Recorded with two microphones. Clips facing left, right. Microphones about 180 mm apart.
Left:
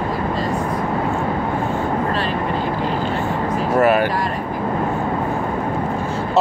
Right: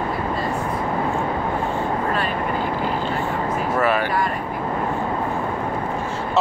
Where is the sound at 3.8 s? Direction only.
45° left (ahead or behind).